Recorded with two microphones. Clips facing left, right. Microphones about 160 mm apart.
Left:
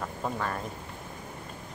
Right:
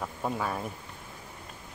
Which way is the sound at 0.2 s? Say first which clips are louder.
Right 1 dB; 5° right (ahead or behind).